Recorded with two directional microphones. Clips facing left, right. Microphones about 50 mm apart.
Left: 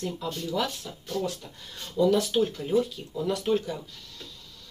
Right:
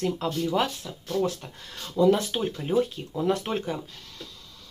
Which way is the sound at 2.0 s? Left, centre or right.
Right.